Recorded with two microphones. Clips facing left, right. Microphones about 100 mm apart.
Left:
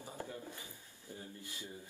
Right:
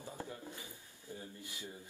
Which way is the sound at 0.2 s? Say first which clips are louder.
Even; 15° right (ahead or behind).